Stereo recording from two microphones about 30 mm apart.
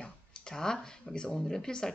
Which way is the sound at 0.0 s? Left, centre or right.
Left.